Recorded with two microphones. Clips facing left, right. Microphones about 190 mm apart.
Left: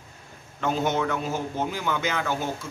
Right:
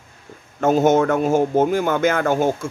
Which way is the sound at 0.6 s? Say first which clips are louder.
Right 10 dB; 45° right (ahead or behind).